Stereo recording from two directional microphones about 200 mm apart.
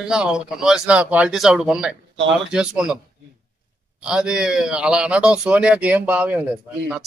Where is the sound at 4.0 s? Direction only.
5° right (ahead or behind).